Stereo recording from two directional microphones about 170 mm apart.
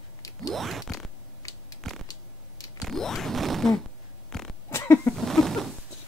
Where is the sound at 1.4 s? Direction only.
20° left (ahead or behind).